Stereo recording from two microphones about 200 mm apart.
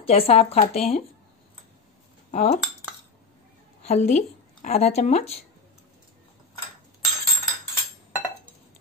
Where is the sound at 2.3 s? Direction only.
30° left (ahead or behind).